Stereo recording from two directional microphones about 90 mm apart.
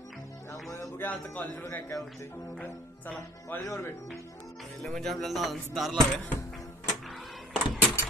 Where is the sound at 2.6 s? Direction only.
20° left (ahead or behind).